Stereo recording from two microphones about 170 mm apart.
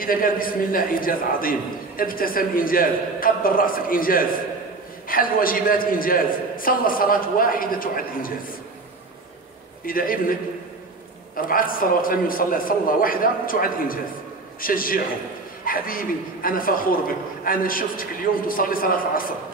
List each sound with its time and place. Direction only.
0.0 s a man's voice: 55° left (ahead or behind)
9.8 s a man's voice: 55° left (ahead or behind)
11.3 s a man's voice: 55° left (ahead or behind)